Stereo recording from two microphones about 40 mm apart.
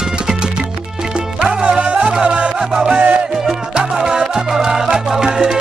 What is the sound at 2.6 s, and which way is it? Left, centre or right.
Music, centre.